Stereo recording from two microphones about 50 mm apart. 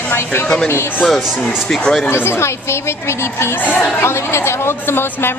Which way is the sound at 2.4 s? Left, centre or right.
Left.